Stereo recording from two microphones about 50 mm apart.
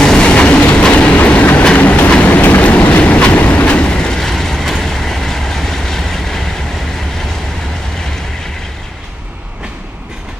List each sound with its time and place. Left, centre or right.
0.0 s train: centre
2.2 s train: left; by 6.5 s centre